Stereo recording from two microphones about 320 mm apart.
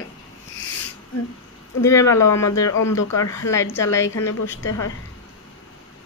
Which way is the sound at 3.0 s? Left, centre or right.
Left.